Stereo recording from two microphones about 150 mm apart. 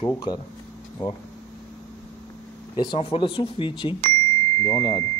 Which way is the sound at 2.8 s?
35° left (ahead or behind).